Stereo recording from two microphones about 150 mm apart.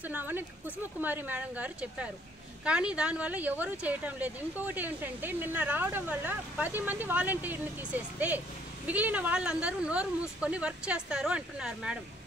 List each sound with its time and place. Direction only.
0.0 s speech: 10° right (ahead or behind)